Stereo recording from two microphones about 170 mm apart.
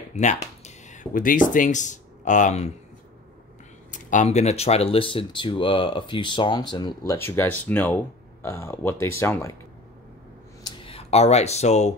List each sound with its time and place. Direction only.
0.1 s speech: 40° left (ahead or behind)
3.9 s speech: 45° left (ahead or behind); by 9.6 s 15° left (ahead or behind)
10.6 s a sound: 30° left (ahead or behind)